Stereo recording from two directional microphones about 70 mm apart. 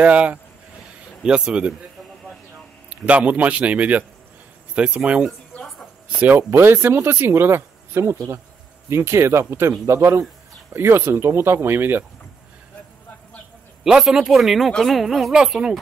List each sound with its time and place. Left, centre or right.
0.0 s speech: centre
2.9 s a man's voice: right
6.2 s speech: right
13.8 s speech: centre